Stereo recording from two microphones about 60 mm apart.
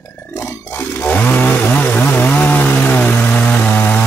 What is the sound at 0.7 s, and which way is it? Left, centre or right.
Chainsaw, left.